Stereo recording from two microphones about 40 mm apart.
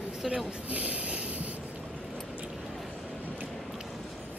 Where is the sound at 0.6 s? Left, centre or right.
Right.